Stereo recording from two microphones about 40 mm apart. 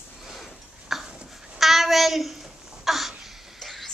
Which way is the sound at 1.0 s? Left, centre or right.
Right.